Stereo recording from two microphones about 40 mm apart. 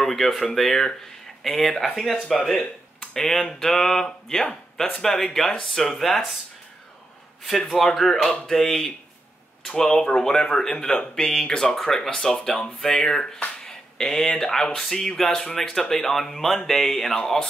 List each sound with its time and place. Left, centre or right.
0.0 s speech: centre
7.4 s speech: centre
13.7 s a sound: centre
14.4 s speech: centre